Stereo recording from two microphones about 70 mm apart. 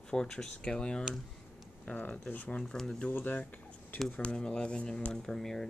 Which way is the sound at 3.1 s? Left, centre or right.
Left.